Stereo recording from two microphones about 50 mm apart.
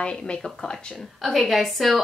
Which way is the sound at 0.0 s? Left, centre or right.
Centre.